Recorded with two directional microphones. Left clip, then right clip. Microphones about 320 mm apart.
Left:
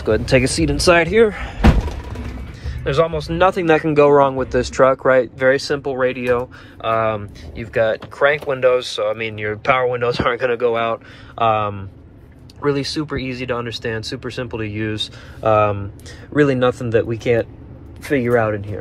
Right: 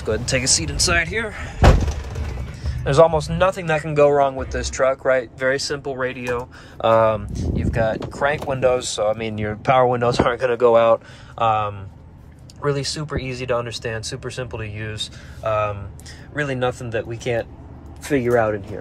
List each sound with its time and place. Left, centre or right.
0.0 s speech: centre
2.6 s speech: centre